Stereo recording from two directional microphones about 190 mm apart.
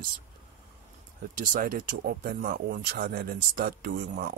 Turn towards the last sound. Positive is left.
turn(degrees=-50)  # may be behind; listen again after turning